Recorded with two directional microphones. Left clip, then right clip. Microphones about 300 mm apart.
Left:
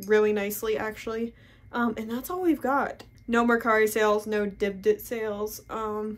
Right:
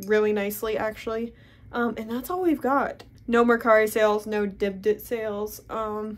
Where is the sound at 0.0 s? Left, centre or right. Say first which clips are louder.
Even; centre.